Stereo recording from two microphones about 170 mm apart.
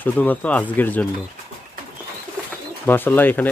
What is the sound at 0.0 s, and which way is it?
Speech, 10° left (ahead or behind).